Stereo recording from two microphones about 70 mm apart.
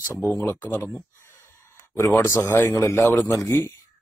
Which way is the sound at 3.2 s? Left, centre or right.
Left.